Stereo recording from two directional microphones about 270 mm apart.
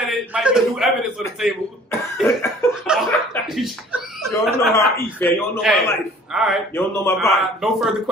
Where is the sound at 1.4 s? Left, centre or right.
Centre.